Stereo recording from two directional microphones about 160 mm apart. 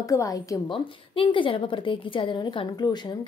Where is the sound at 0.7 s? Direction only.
35° left (ahead or behind).